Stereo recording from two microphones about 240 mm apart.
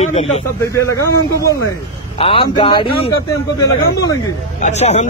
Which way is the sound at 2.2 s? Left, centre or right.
Left.